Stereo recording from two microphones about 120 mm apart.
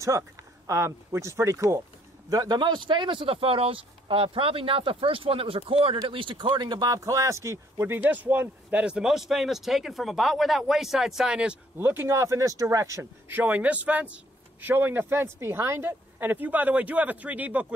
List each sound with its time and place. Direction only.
0.7 s a man's voice: 20° right (ahead or behind); by 11.5 s 5° right (ahead or behind)
11.8 s speech: 20° right (ahead or behind)